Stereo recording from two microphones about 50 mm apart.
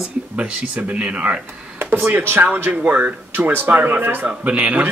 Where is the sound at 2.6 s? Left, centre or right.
Right.